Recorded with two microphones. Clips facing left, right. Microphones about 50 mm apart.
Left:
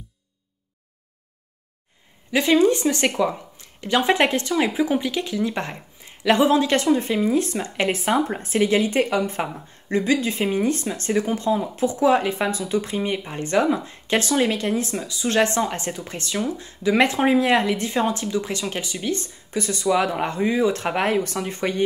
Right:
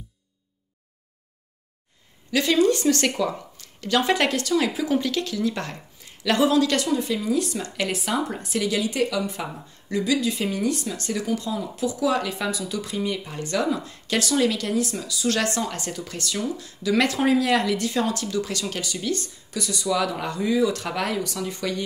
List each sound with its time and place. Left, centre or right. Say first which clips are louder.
2.3 s speech: left 2 dB; left